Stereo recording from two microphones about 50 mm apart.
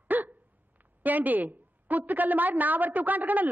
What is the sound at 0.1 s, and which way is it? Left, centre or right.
Hiccup, right.